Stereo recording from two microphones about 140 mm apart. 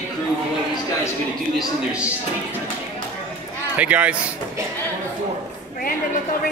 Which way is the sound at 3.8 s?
10° right (ahead or behind).